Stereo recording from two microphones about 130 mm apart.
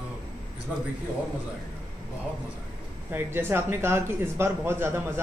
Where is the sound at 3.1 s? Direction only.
15° right (ahead or behind).